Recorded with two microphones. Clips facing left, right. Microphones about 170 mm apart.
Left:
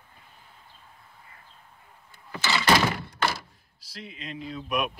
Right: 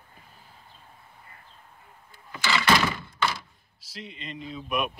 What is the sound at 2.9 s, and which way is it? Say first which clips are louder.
Thunk: left 1 dB; 60° left (ahead or behind).